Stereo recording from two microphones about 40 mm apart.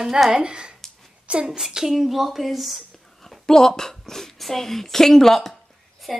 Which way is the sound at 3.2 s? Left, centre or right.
Centre.